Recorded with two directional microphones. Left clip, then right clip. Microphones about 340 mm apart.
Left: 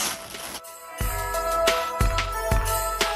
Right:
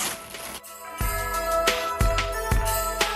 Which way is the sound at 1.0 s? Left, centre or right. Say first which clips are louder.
Even; centre.